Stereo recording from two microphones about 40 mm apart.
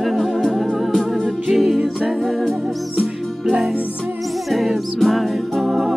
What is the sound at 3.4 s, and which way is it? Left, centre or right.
Music, centre.